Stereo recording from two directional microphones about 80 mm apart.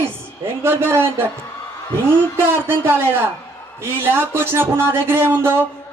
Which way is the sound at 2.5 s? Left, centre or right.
Right.